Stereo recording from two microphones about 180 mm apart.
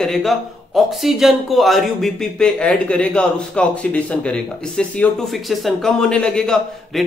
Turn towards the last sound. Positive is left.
turn(degrees=5)  # may be behind; listen again after turning